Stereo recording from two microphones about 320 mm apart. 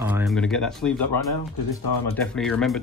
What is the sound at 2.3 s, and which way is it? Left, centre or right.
Speech, centre.